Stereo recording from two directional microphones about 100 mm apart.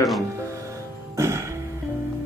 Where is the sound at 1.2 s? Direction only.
25° right (ahead or behind).